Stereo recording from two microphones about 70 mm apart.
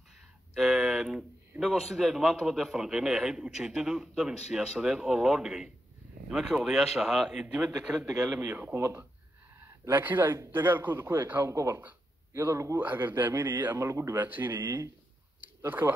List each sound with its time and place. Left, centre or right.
0.6 s a sound: centre
1.6 s a man's voice: centre
8.4 s a man's voice: right
8.7 s speech: right
9.8 s a man's voice: right
11.4 s speech: right
12.7 s a man's voice: right
13.7 s speech: right
14.1 s a man's voice: right
15.6 s speech: right